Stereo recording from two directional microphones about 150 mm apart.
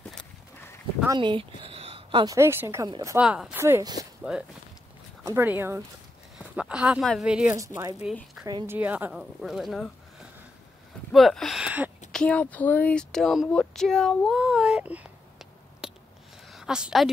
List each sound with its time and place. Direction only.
1.1 s speech: 30° right (ahead or behind)
2.2 s a woman's voice: 20° right (ahead or behind)
3.2 s speech: 5° right (ahead or behind)
3.5 s a woman's voice: 15° right (ahead or behind)
3.8 s speech: 25° right (ahead or behind)
4.2 s a woman's voice: 5° right (ahead or behind)
6.3 s a sound: 5° right (ahead or behind)
7.1 s speech: 5° right (ahead or behind)
7.5 s speech: 20° right (ahead or behind)
8.0 s speech: 5° right (ahead or behind)
11.1 s speech: centre (ahead or behind)
12.1 s speech: 5° left (ahead or behind)
16.4 s a sound: 5° right (ahead or behind)